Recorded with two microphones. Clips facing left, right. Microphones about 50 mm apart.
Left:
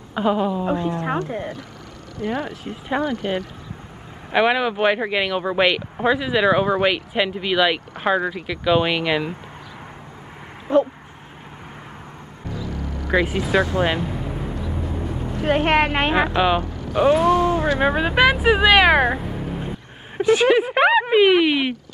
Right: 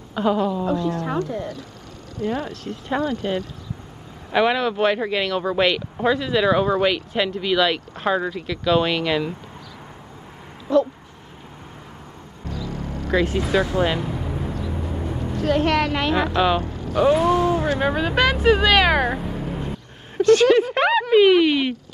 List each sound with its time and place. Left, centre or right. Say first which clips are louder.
0.1 s speech: even; centre
0.7 s a woman's voice: left 1 dB; left
2.5 s speech: left 1 dB; centre
3.0 s a woman's voice: even; left
4.3 s speech: left 1 dB; centre
10.7 s a woman's voice: left 1 dB; left
13.1 s speech: left 1 dB; centre
15.4 s a woman's voice: left 2 dB; left
16.3 s speech: left 1 dB; left
17.1 s speech: left 2 dB; centre
17.7 s speech: left 2 dB; centre
20.2 s speech: right 2 dB; centre